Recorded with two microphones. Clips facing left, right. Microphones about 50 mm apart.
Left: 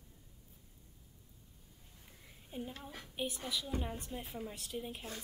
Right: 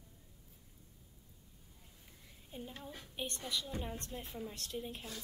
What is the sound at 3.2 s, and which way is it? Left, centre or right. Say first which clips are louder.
A woman's voice: left 2 dB; centre.